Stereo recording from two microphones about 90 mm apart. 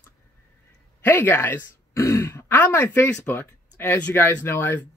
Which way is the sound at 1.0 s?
20° left (ahead or behind).